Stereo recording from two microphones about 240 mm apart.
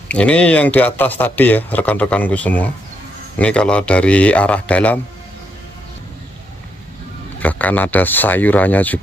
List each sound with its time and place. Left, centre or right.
0.1 s a man's voice: centre
7.3 s speech: centre